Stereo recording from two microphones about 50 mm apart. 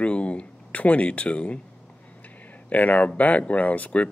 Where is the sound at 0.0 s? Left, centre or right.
Left.